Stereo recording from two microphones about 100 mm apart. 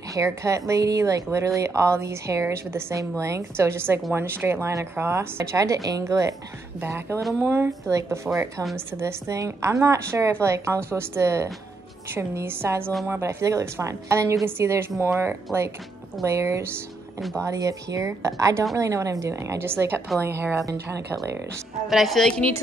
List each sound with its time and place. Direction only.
0.1 s a woman's voice: 30° right (ahead or behind)
7.2 s a woman's voice: centre (ahead or behind)
7.4 s a woman's voice: 20° right (ahead or behind)
21.8 s a woman's voice: centre (ahead or behind)